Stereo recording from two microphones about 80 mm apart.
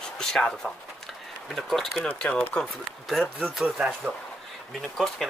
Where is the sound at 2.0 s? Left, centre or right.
Centre.